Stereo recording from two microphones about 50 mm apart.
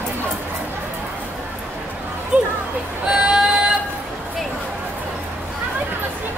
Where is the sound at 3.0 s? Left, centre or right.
Centre.